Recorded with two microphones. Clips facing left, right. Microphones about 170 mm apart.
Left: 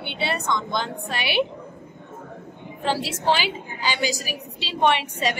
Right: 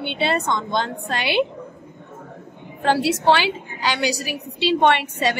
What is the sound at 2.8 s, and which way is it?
A woman's voice, 65° right (ahead or behind).